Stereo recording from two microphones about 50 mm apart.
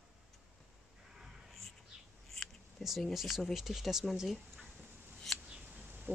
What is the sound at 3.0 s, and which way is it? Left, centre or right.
Speech, centre.